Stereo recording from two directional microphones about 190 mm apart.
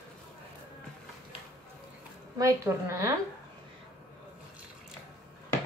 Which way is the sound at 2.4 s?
15° right (ahead or behind).